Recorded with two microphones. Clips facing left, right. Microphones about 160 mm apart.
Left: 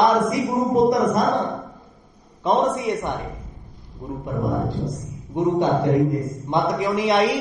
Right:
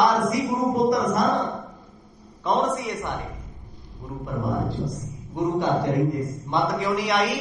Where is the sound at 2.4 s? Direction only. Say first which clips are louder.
Left 4 dB; 20° left (ahead or behind).